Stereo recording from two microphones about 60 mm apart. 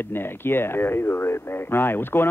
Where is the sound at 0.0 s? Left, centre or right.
Left.